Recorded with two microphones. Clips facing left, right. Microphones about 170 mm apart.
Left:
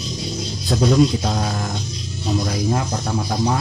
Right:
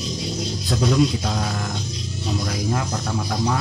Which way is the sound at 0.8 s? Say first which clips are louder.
Left 4 dB; 40° left (ahead or behind).